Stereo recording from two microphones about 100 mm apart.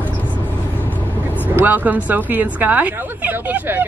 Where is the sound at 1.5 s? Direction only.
20° right (ahead or behind).